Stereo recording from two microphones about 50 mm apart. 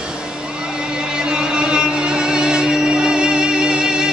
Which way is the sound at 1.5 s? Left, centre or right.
Centre.